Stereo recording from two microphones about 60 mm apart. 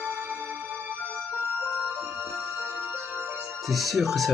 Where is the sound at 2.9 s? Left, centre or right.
Right.